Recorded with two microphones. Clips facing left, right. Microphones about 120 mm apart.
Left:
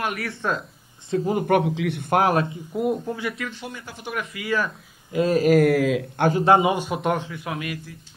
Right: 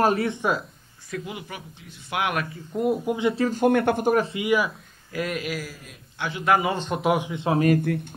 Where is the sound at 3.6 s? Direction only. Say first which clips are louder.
Right 17 dB; 60° right (ahead or behind).